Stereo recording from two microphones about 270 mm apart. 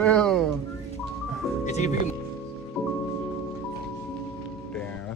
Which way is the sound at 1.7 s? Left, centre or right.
Left.